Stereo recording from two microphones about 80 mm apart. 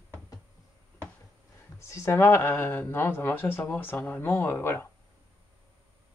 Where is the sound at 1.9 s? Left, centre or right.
Left.